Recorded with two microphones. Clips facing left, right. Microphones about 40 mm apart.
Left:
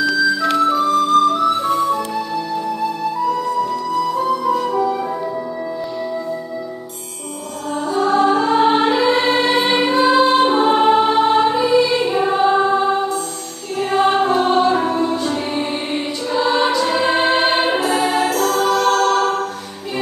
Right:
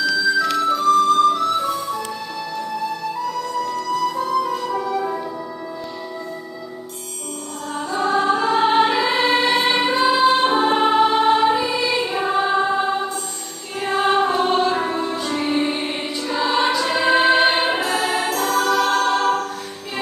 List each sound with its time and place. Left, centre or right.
0.7 s music: centre
1.7 s music: left
3.3 s music: centre
7.9 s music: centre